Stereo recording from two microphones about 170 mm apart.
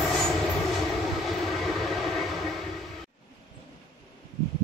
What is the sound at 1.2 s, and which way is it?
Vehicle, centre (ahead or behind).